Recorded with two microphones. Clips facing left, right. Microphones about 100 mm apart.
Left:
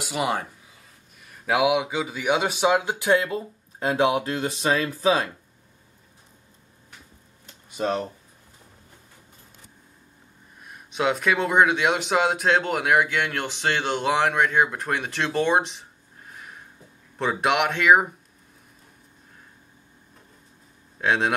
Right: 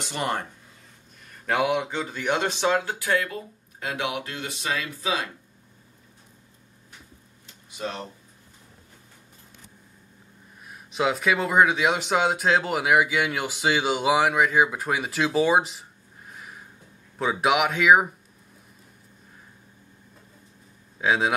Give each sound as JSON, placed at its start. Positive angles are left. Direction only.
{"t": 0.0, "sound": "speech", "side_deg": 5}
{"t": 7.7, "sound": "speech", "side_deg": 45}
{"t": 10.6, "sound": "speech", "side_deg": 0}
{"t": 21.0, "sound": "speech", "side_deg": 0}